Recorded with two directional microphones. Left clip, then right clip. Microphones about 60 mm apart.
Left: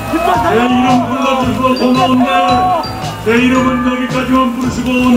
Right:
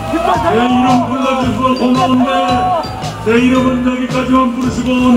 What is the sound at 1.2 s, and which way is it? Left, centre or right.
Music, left.